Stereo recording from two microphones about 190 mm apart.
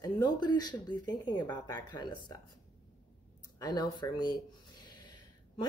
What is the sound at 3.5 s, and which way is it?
Speech, 20° left (ahead or behind).